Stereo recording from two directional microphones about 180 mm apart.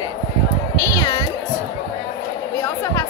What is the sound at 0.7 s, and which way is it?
Music, 15° left (ahead or behind).